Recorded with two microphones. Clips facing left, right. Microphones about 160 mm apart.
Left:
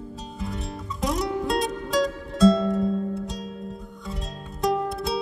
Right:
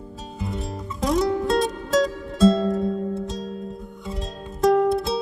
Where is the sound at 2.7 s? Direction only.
Centre (ahead or behind).